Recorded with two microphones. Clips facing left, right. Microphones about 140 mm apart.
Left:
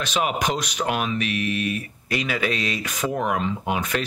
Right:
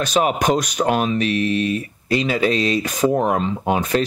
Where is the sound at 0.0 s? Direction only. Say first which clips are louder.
Right 6 dB; 40° right (ahead or behind).